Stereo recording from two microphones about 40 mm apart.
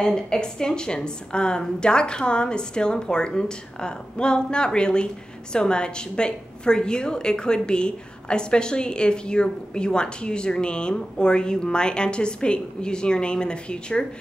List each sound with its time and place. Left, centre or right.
0.0 s a woman's voice: centre